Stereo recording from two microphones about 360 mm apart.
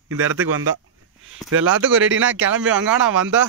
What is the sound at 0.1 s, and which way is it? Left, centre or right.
Speech, right.